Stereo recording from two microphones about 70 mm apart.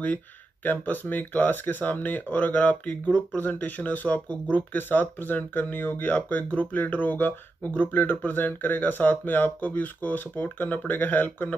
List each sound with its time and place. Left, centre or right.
0.7 s speech: left